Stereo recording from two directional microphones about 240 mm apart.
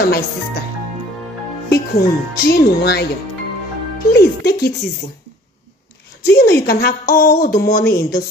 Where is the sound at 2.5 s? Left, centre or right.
Left.